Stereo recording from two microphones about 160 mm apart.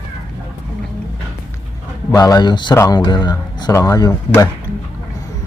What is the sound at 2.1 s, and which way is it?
Speech, 20° left (ahead or behind).